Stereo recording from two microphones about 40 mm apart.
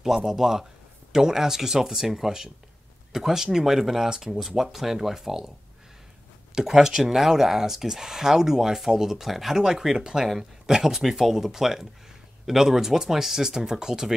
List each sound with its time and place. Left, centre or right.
0.0 s speech: centre
6.5 s speech: centre